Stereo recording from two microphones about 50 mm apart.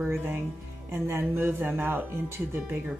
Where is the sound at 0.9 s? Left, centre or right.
Right.